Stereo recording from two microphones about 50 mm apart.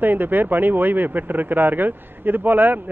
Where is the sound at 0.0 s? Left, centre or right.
Right.